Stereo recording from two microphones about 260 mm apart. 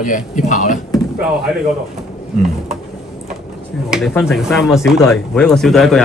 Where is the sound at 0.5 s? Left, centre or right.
Left.